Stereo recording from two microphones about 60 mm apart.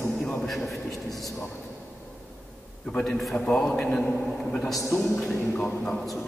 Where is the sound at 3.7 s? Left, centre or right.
Centre.